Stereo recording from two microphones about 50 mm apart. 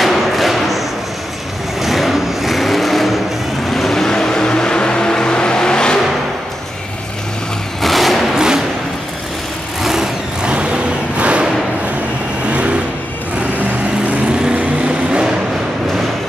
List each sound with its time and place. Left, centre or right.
0.0 s a sound: centre
1.8 s vehicle: centre
7.8 s vehicle: centre
8.4 s thump: centre
9.8 s vehicle: centre
10.4 s a sound: right
12.4 s vehicle: right